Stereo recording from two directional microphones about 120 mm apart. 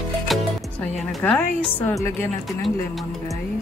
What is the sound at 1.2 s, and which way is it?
Speech, 10° left (ahead or behind).